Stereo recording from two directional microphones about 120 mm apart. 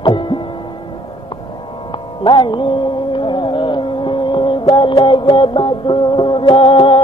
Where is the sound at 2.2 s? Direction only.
45° left (ahead or behind).